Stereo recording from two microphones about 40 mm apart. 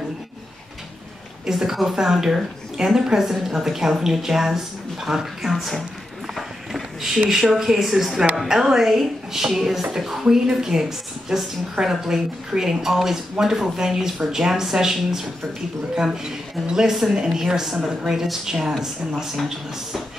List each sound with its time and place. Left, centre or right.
1.4 s a woman's voice: centre